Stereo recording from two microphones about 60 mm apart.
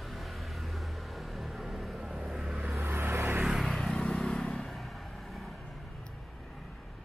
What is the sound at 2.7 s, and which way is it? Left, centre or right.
Vehicle, right.